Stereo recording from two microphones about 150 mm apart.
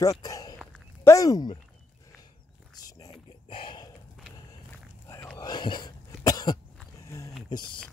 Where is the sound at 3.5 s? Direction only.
35° left (ahead or behind).